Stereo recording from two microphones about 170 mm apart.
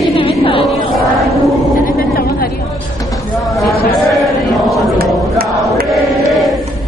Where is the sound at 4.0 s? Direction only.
Centre (ahead or behind).